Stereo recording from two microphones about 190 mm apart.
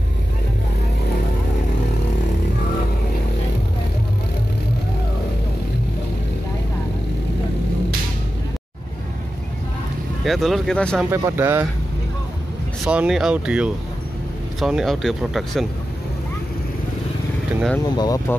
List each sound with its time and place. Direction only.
10.2 s speech: centre (ahead or behind)
11.1 s speech: 15° right (ahead or behind)
12.8 s speech: 5° right (ahead or behind)
17.8 s speech: 20° left (ahead or behind)